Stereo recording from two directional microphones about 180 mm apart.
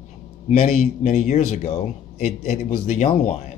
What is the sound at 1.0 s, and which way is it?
Speech, 40° left (ahead or behind).